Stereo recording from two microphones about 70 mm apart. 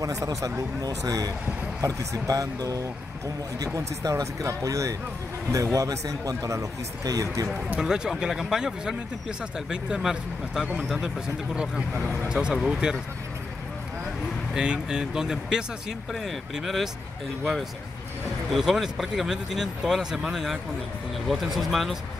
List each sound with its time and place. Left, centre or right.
0.0 s speech: right
7.8 s speech: centre
14.5 s speech: centre
18.5 s speech: centre